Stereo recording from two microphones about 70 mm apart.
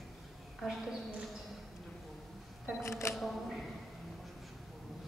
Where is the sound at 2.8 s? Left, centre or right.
Left.